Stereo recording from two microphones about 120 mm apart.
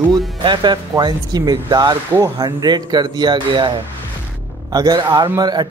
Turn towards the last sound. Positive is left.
turn(degrees=-35)  # may be behind; listen again after turning